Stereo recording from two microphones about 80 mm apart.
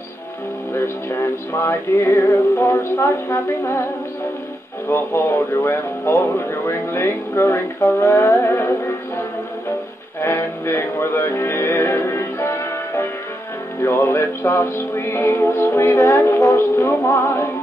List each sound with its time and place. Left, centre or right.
1.5 s music: left
2.7 s music: left
4.8 s music: left
8.4 s music: left
10.2 s music: left
16.5 s music: left